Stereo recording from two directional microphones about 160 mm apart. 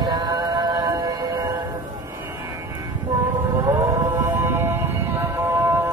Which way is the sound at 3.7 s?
15° right (ahead or behind).